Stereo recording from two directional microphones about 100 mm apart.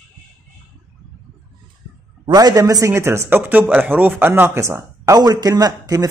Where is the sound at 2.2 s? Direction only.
40° right (ahead or behind).